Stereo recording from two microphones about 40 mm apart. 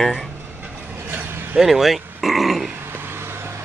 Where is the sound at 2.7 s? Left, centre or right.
Right.